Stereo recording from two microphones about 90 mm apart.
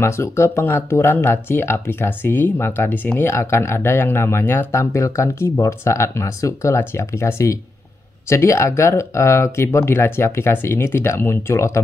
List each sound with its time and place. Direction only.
0.0 s speech: 30° left (ahead or behind)